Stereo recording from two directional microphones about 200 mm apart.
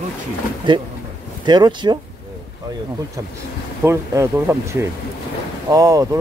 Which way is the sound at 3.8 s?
15° right (ahead or behind).